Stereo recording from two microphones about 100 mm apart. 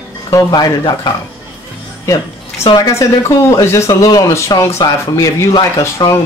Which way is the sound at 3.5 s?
30° left (ahead or behind).